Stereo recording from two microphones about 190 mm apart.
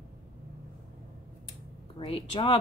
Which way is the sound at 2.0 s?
25° left (ahead or behind).